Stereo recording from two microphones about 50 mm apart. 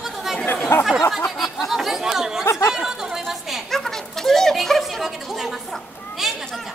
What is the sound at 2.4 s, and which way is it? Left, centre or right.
Speech, left.